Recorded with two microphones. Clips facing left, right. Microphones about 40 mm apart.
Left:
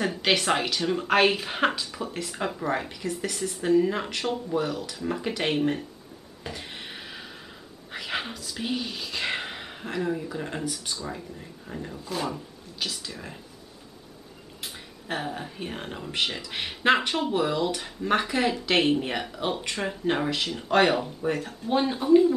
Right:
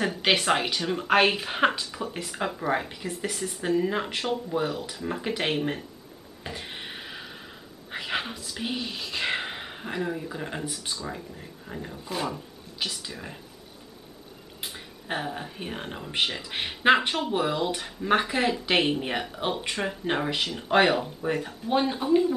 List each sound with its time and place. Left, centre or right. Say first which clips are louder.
0.0 s speech: even; centre
6.4 s a sound: right 1 dB; centre
8.4 s speech: left 1 dB; centre
12.2 s speech: even; centre
14.6 s speech: right 1 dB; centre